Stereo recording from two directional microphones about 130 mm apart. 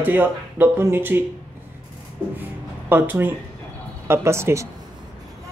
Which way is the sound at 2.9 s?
15° right (ahead or behind).